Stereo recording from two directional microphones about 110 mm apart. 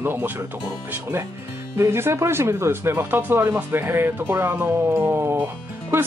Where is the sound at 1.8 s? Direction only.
20° right (ahead or behind).